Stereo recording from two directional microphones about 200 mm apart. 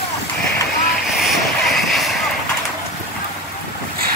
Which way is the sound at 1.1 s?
Centre (ahead or behind).